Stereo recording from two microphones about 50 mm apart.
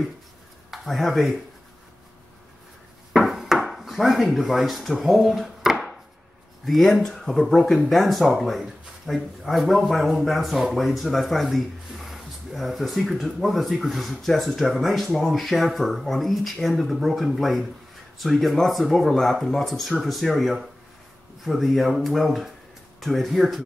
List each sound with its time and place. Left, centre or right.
0.7 s speech: centre
3.1 s wood: centre
6.6 s speech: centre